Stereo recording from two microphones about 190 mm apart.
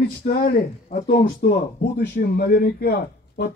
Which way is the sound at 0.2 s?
55° left (ahead or behind).